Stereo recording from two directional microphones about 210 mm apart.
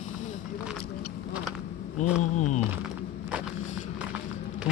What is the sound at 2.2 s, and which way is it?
Speech, 35° left (ahead or behind).